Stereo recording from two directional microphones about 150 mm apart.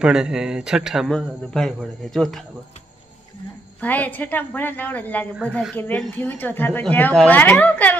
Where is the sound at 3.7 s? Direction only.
10° left (ahead or behind).